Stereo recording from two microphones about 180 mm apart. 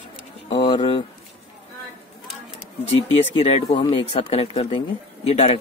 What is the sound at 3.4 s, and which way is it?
Speech, 35° left (ahead or behind).